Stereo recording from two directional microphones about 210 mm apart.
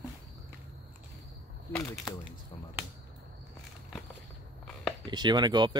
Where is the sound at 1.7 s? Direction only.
5° left (ahead or behind).